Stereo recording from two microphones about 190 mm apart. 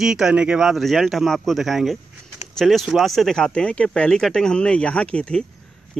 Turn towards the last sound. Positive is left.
turn(degrees=5)  # may be behind; listen again after turning